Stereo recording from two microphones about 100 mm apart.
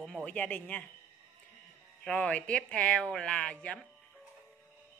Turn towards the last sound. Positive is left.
turn(degrees=10)  # may be behind; listen again after turning